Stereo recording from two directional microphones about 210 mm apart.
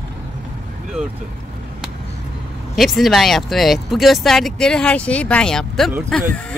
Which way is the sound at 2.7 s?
Centre (ahead or behind).